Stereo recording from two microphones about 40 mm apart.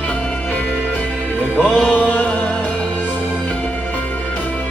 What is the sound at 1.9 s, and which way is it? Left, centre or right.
Music, left.